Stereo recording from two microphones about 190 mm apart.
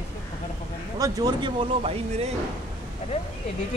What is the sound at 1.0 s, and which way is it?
Speech, 20° right (ahead or behind).